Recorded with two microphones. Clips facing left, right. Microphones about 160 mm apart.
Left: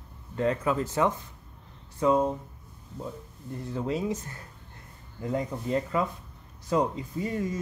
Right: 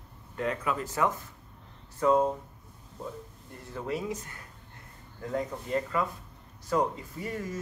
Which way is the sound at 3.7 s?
25° left (ahead or behind).